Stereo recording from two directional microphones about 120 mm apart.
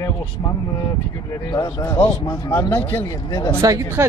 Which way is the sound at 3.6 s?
25° right (ahead or behind).